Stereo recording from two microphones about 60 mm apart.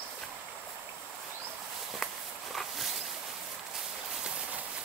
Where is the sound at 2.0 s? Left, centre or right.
Centre.